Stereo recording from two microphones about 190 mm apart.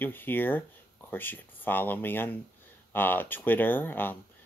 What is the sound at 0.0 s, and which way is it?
Speech, 10° left (ahead or behind).